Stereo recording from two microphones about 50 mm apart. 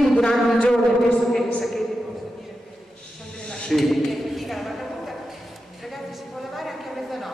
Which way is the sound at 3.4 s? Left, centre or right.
Centre.